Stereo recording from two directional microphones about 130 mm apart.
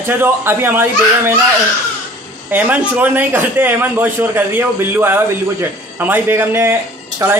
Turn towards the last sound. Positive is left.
turn(degrees=-20)  # may be behind; listen again after turning